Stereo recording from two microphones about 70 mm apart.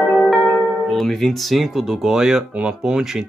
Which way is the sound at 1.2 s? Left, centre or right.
Centre.